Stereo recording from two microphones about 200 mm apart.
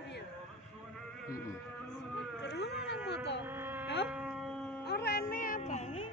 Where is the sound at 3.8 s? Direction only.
60° left (ahead or behind).